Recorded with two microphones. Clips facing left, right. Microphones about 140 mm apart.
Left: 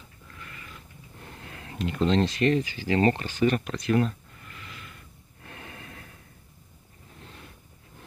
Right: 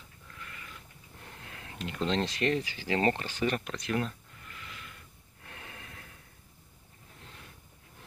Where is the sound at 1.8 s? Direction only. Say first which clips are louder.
Left 7 dB; 20° left (ahead or behind).